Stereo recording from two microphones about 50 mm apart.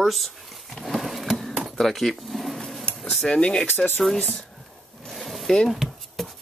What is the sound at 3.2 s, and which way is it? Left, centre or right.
Speech, centre.